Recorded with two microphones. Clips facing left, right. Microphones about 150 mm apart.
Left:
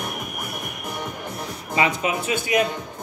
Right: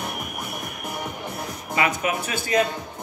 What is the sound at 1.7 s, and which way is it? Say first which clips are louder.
Speech: left 1 dB; 25° left (ahead or behind).